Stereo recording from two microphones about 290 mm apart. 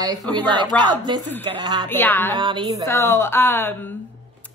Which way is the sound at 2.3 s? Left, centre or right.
Centre.